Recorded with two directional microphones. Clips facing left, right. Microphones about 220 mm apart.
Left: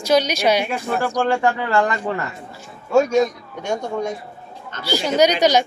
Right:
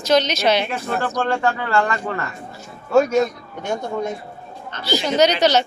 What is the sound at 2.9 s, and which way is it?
A man's voice, 5° right (ahead or behind).